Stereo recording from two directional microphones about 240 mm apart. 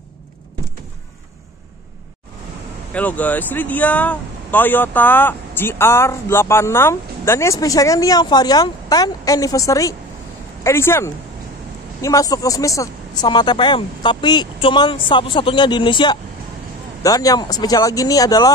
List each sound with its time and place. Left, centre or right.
2.9 s speech: centre